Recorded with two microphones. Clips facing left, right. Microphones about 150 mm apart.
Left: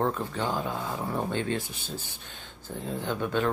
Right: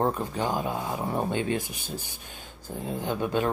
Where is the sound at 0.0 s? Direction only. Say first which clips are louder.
Right 2 dB; 15° right (ahead or behind).